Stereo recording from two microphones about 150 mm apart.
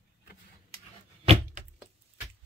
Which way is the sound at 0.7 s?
40° right (ahead or behind).